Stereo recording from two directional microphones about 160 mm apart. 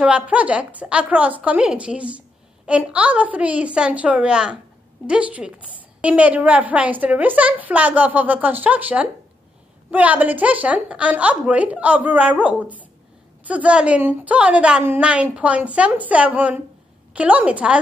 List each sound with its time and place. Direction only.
0.0 s a woman's voice: 10° right (ahead or behind)